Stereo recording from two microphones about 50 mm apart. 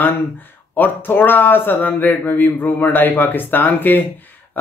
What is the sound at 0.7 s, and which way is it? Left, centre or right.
Speech, left.